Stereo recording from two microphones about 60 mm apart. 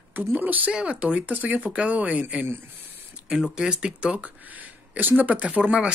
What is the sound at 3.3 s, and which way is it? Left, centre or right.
Speech, centre.